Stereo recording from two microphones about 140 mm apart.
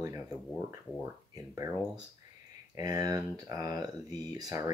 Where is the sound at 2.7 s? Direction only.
25° right (ahead or behind).